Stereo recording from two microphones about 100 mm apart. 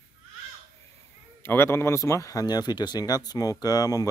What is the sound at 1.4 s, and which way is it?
Speech, 25° left (ahead or behind).